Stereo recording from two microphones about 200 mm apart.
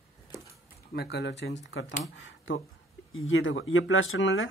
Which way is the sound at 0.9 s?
55° left (ahead or behind).